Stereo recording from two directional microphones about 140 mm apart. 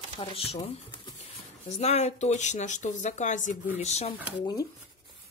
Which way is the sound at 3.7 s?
50° left (ahead or behind).